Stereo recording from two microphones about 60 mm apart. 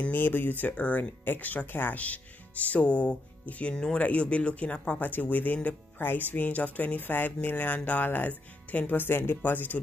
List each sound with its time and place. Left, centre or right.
0.1 s speech: left
5.0 s speech: left